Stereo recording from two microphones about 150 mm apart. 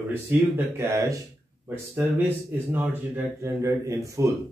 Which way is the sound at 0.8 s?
20° right (ahead or behind).